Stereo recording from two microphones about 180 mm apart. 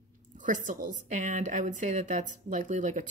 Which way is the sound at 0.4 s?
45° right (ahead or behind).